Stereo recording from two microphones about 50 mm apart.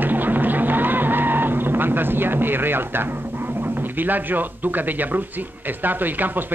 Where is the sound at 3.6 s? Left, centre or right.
Right.